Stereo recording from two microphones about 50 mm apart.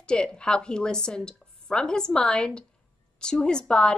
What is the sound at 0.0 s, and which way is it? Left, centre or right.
A woman's voice, centre.